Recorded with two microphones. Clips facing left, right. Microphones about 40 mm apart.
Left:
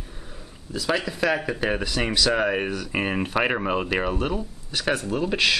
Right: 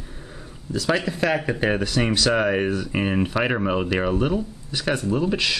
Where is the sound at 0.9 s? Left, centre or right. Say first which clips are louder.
Even; centre.